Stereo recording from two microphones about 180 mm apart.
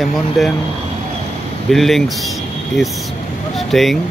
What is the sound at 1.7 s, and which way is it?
Speech, centre (ahead or behind).